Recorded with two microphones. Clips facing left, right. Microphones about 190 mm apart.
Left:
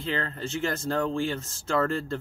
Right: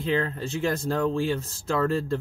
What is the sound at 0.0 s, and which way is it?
Speech, 10° right (ahead or behind).